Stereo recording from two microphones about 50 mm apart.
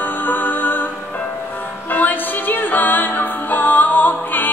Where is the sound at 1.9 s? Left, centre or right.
Left.